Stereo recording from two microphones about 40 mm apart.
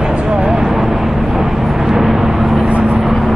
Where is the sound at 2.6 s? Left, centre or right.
Right.